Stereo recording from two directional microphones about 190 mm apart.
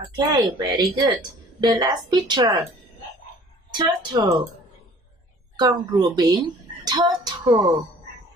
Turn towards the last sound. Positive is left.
turn(degrees=-20)  # may be behind; listen again after turning